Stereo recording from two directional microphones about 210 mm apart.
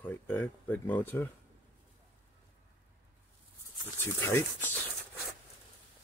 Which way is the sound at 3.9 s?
10° left (ahead or behind).